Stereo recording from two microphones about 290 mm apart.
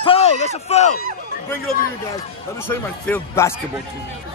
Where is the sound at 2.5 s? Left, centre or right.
Centre.